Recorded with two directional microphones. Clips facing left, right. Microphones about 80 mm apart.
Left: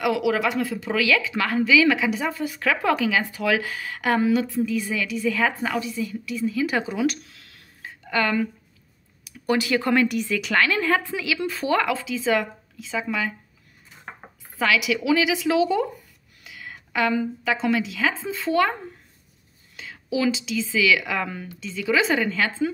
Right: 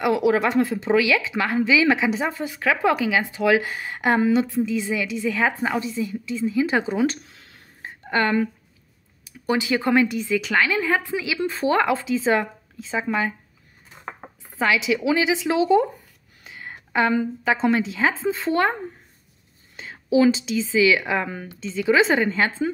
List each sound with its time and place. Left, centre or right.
0.0 s speech: right
14.6 s a woman's voice: right
19.8 s speech: right